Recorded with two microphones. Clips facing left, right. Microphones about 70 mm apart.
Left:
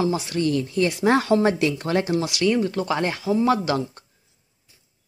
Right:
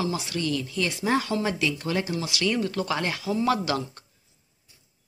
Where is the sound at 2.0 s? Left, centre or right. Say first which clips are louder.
Left 7 dB; left.